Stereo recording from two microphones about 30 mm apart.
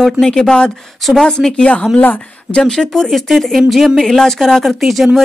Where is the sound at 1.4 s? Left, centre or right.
Right.